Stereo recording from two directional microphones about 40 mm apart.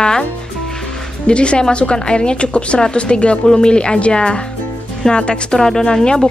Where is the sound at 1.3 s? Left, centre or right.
Left.